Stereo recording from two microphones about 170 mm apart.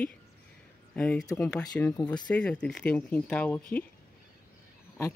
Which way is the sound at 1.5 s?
20° left (ahead or behind).